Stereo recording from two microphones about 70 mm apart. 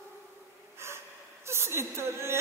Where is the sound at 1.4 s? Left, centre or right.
Right.